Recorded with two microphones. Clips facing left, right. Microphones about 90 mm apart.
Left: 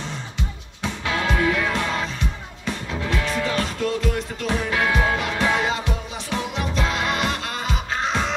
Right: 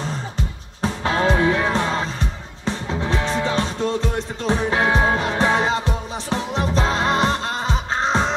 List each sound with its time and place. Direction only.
0.0 s music: 40° right (ahead or behind)